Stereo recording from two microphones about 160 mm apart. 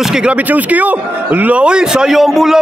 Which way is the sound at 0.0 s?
5° right (ahead or behind).